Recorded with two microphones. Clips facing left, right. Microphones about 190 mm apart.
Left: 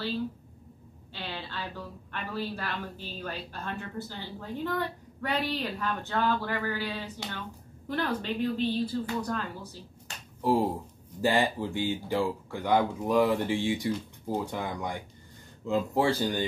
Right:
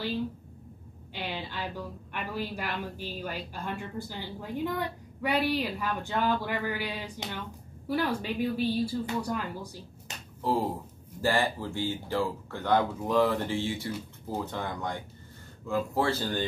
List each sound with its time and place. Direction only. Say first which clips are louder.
1.1 s a woman's voice: right 2 dB; 15° right (ahead or behind)
11.1 s speech: left 2 dB; 15° left (ahead or behind)